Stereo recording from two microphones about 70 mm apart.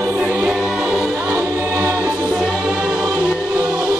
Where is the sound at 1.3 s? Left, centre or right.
Right.